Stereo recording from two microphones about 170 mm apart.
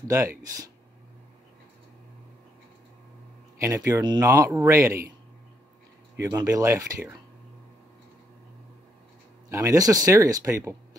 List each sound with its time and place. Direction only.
3.5 s speech: 15° right (ahead or behind)
6.3 s speech: 20° right (ahead or behind)
9.5 s speech: 15° right (ahead or behind)